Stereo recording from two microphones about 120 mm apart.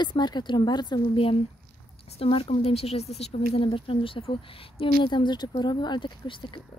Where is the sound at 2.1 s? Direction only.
55° left (ahead or behind).